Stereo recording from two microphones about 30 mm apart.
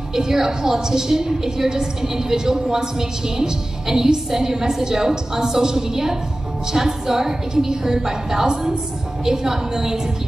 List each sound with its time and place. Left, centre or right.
0.1 s a woman's voice: centre